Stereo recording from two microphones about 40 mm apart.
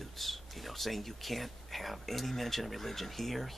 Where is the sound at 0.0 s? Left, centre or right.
Centre.